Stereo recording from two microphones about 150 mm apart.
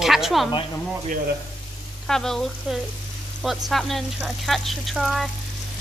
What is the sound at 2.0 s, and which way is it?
Speech, 5° left (ahead or behind).